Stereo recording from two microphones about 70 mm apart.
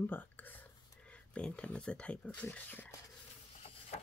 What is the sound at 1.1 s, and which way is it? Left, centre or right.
Speech, centre.